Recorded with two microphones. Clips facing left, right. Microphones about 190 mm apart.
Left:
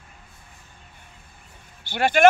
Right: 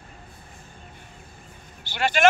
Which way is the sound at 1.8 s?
50° left (ahead or behind).